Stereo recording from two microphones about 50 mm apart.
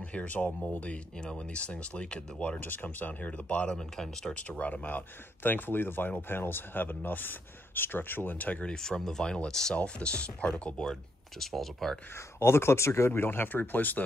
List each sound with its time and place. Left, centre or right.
0.0 s speech: left
1.1 s speech: centre
2.6 s speech: left
3.7 s speech: centre
4.4 s speech: left
8.6 s speech: centre
9.8 s speech: left; by 12.0 s centre
12.2 s speech: left